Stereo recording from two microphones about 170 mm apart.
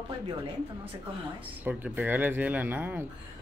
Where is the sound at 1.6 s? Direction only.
10° right (ahead or behind).